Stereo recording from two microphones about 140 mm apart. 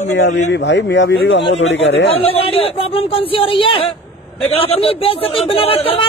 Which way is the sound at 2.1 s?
45° left (ahead or behind).